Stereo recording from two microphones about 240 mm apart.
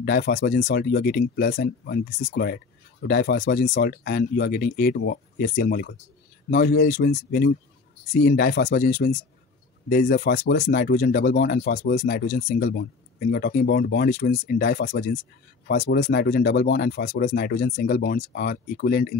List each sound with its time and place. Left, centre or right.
0.0 s speech: left